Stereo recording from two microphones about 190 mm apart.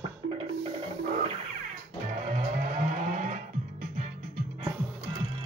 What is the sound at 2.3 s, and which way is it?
Music, 40° right (ahead or behind).